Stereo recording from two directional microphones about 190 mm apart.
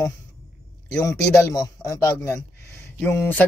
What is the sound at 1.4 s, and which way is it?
Speech, 15° left (ahead or behind).